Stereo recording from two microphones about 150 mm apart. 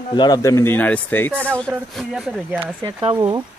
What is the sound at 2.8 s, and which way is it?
Speech, 30° right (ahead or behind).